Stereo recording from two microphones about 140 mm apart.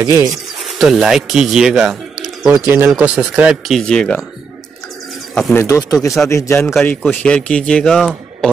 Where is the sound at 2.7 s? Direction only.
10° right (ahead or behind).